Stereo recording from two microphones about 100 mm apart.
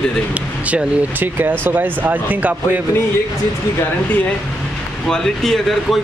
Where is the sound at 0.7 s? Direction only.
15° right (ahead or behind).